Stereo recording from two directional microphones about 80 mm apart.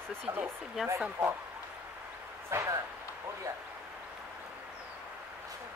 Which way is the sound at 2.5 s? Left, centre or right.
Right.